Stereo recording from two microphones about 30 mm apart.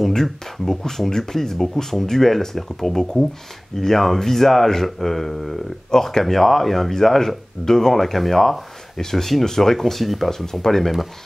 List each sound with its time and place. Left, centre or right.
0.1 s speech: centre
5.9 s speech: left
6.2 s speech: centre
10.3 s speech: centre